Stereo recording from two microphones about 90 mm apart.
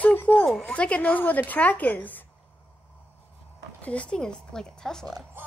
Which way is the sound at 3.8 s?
15° left (ahead or behind).